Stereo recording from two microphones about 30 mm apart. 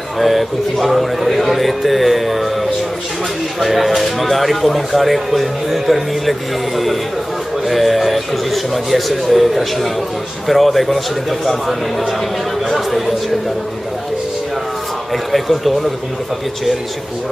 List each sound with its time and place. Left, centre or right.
0.2 s speech: centre
7.6 s speech: centre